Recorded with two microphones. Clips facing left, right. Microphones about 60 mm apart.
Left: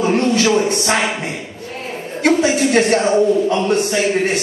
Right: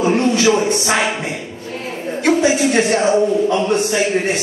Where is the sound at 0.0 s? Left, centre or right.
Right.